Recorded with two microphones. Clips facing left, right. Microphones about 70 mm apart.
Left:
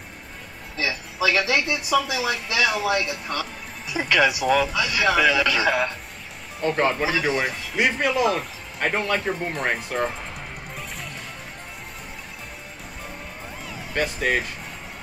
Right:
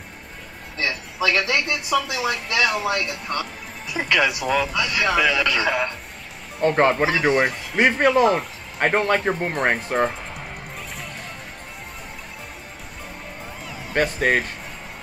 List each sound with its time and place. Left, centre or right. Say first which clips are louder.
0.7 s speech: right 1 dB; centre
6.6 s speech: right 4 dB; right
13.9 s speech: right 4 dB; right